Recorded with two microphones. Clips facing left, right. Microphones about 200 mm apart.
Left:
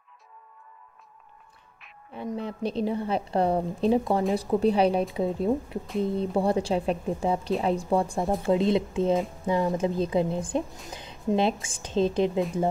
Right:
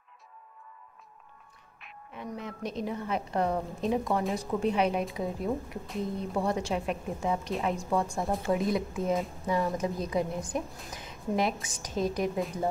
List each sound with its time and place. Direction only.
2.1 s a woman's voice: 30° left (ahead or behind)